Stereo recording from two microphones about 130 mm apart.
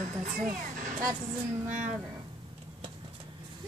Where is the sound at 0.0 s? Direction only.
85° right.